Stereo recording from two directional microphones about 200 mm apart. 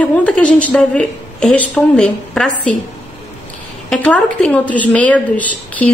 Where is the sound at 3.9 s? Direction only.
5° left (ahead or behind).